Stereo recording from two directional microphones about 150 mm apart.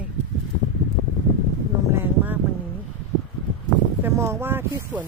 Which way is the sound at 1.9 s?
15° right (ahead or behind).